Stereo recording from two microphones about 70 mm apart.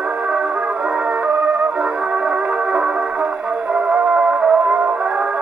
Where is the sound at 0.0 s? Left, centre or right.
Centre.